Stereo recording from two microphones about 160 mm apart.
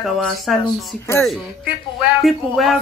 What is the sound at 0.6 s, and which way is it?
Speech, 20° left (ahead or behind).